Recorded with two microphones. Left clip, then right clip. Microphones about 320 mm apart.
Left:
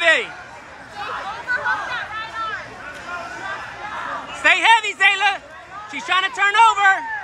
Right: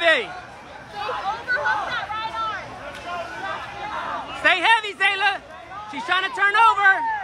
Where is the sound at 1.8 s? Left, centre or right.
Right.